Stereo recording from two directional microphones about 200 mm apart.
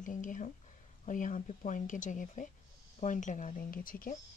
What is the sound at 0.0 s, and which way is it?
Speech, 40° left (ahead or behind).